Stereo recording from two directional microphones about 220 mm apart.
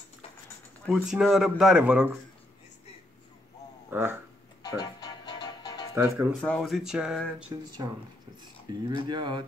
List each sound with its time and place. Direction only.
0.8 s speech: 5° right (ahead or behind)
3.9 s speech: 10° right (ahead or behind)
4.6 s music: 15° left (ahead or behind)
5.9 s speech: 10° right (ahead or behind)
6.4 s speech: 5° left (ahead or behind)
7.8 s speech: 15° right (ahead or behind)